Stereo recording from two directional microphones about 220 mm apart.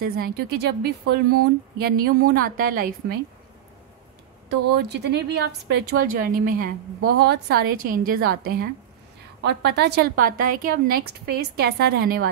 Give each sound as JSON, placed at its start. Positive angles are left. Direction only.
{"t": 0.0, "sound": "a woman's voice", "side_deg": -45}
{"t": 4.5, "sound": "a woman's voice", "side_deg": -50}
{"t": 9.4, "sound": "a woman's voice", "side_deg": -50}